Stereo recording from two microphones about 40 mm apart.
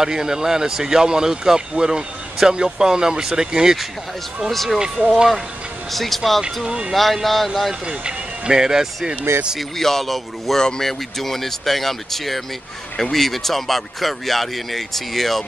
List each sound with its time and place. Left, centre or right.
0.0 s speech: centre
4.5 s speech: centre
4.9 s speech: centre
5.9 s speech: centre
6.6 s speech: centre
6.9 s speech: centre
7.8 s speech: centre
9.6 s speech: centre